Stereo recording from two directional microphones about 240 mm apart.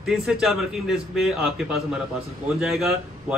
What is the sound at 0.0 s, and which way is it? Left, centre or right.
A man's voice, centre.